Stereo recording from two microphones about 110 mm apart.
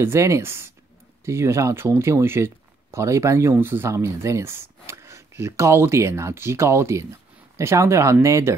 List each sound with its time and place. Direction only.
0.0 s speech: 25° right (ahead or behind)